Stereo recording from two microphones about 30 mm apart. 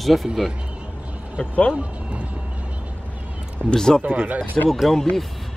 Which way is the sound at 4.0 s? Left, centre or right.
Right.